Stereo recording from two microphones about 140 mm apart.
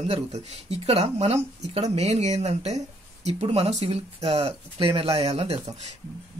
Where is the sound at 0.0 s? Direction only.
45° right (ahead or behind).